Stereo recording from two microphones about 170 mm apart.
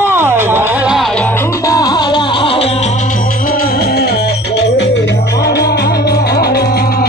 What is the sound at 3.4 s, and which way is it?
Music, 55° left (ahead or behind).